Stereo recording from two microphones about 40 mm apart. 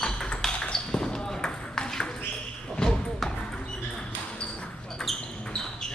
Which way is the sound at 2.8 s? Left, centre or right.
Left.